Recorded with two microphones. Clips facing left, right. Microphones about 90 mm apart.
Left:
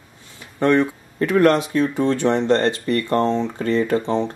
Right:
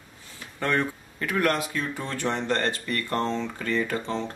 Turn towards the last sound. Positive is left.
turn(degrees=15)  # may be behind; listen again after turning